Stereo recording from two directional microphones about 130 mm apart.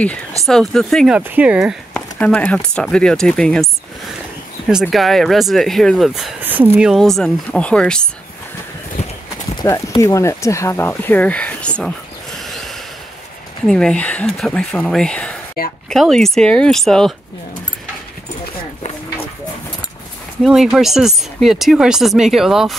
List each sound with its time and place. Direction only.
0.5 s speech: 5° left (ahead or behind)
1.1 s speech: 10° right (ahead or behind)
2.1 s speech: 10° left (ahead or behind)
4.8 s speech: centre (ahead or behind)
6.4 s speech: 15° right (ahead or behind)
6.9 s speech: centre (ahead or behind)
9.6 s speech: 25° left (ahead or behind); by 11.9 s 10° left (ahead or behind)
12.4 s a sound: centre (ahead or behind)
13.7 s speech: 5° left (ahead or behind)
20.4 s speech: 5° right (ahead or behind)